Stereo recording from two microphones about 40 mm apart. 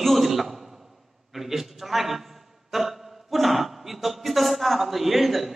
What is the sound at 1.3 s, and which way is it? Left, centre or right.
A man's voice, centre.